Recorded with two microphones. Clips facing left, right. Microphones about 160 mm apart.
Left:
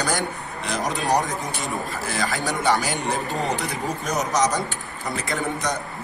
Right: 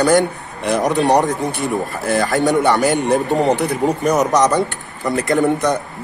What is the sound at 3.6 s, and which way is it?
Speech, 65° right (ahead or behind).